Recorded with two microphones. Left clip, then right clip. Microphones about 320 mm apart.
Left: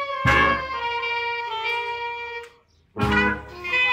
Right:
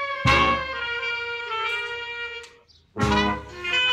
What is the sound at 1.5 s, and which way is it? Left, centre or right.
Music, centre.